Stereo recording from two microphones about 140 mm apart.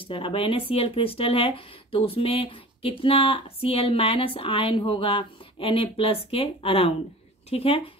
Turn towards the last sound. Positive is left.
turn(degrees=45)  # may be behind; listen again after turning